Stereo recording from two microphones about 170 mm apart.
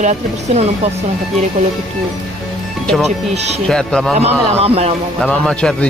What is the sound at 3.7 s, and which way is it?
Speech, 5° left (ahead or behind).